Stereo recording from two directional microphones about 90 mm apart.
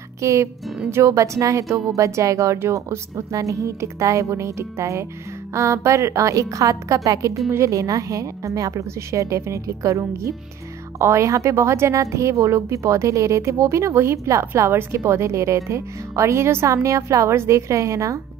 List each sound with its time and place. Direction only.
0.2 s speech: 35° right (ahead or behind)